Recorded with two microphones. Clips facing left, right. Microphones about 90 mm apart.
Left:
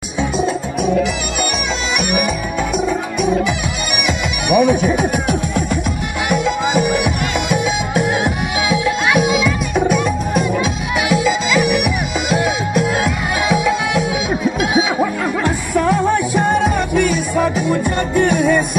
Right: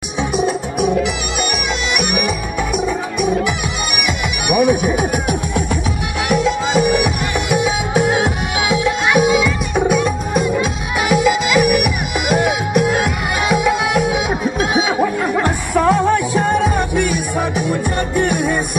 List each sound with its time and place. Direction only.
4.5 s music: 15° right (ahead or behind)
7.5 s music: 20° right (ahead or behind)
15.3 s music: 45° right (ahead or behind)
16.7 s music: 15° right (ahead or behind)